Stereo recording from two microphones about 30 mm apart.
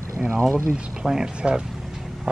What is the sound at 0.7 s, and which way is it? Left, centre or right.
Speech, right.